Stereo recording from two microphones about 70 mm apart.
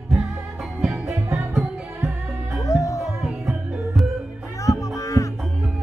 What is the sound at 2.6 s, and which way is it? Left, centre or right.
Music, left.